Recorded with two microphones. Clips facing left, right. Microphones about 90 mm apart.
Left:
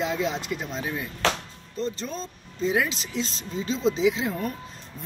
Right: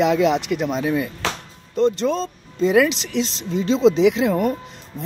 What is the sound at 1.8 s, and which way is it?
Speech, 75° right (ahead or behind).